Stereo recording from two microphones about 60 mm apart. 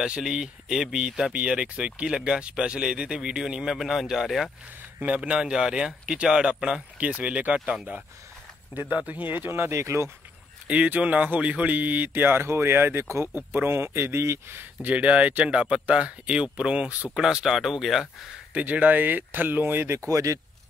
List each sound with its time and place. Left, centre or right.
0.0 s speech: centre
5.0 s speech: right
5.5 s speech: centre
7.1 s speech: right
8.7 s speech: right
10.7 s speech: right
14.6 s speech: right; by 18.3 s centre
18.5 s speech: right
20.1 s speech: right